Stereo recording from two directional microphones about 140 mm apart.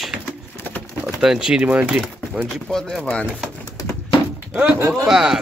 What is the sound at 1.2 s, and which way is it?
Speech, 5° right (ahead or behind).